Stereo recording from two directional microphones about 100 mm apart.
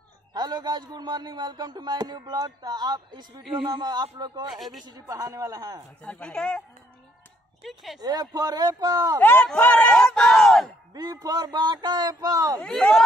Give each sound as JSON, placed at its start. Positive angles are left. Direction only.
{"t": 0.3, "sound": "a man's voice", "side_deg": -45}
{"t": 4.6, "sound": "speech", "side_deg": 0}
{"t": 4.8, "sound": "speech", "side_deg": -35}
{"t": 6.0, "sound": "speech", "side_deg": 10}
{"t": 7.6, "sound": "speech", "side_deg": 0}
{"t": 8.0, "sound": "speech", "side_deg": -40}
{"t": 9.2, "sound": "speech", "side_deg": 20}
{"t": 10.9, "sound": "a man's voice", "side_deg": -40}
{"t": 12.5, "sound": "speech", "side_deg": 10}